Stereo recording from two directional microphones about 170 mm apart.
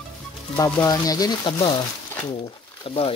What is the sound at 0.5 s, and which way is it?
Speech, 20° left (ahead or behind).